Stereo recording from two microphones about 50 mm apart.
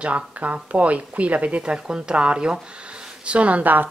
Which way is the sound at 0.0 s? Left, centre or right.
Right.